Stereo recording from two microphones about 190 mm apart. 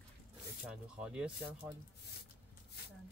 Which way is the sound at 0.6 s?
5° right (ahead or behind).